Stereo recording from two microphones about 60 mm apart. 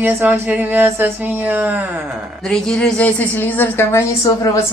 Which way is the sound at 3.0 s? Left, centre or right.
Left.